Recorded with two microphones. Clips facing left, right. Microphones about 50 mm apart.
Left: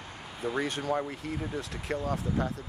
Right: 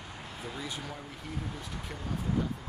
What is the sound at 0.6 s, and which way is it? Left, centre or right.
Speech, left.